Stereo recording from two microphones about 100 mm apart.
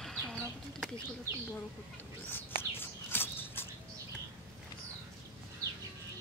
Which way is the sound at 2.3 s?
20° left (ahead or behind).